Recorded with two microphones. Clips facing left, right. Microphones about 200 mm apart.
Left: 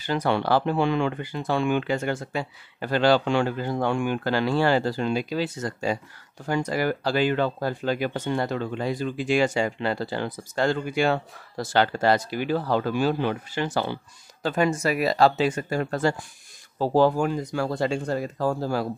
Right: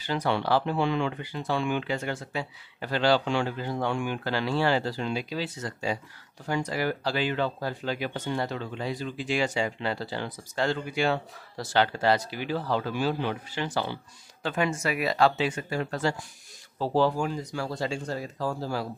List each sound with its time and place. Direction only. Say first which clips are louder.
0.0 s speech: left 3 dB; 50° left (ahead or behind)